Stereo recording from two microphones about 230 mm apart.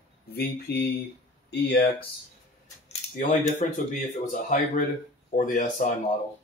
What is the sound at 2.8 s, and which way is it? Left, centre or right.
Speech, left.